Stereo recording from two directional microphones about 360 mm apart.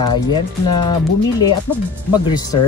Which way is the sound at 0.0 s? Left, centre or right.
Centre.